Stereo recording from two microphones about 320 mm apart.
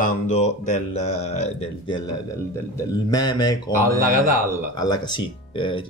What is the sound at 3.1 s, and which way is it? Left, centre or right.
Speech, centre.